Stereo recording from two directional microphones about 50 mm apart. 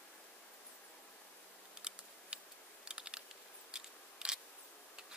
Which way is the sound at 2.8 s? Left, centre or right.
Centre.